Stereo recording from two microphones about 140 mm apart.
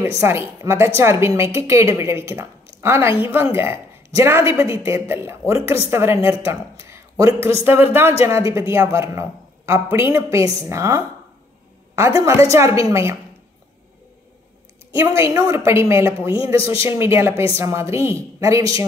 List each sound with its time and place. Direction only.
0.0 s a woman's voice: 20° right (ahead or behind)
15.0 s a woman's voice: 20° right (ahead or behind)